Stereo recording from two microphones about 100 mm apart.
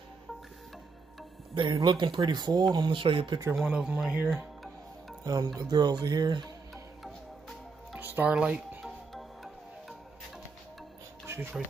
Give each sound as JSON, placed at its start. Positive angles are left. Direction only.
{"t": 1.5, "sound": "speech", "side_deg": -50}
{"t": 3.5, "sound": "speech", "side_deg": -10}
{"t": 5.2, "sound": "speech", "side_deg": -40}
{"t": 6.7, "sound": "music", "side_deg": 0}
{"t": 8.0, "sound": "music", "side_deg": -20}